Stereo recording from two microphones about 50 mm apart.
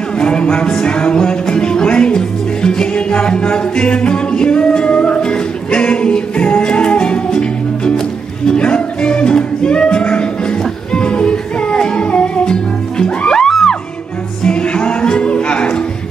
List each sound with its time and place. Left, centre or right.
0.2 s music: centre